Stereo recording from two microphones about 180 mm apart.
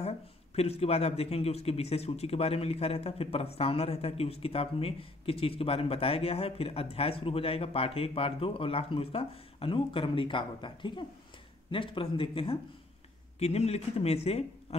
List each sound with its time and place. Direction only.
0.6 s speech: 35° left (ahead or behind)